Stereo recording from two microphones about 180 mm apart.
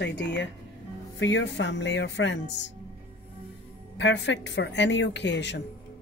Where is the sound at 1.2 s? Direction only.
90° left.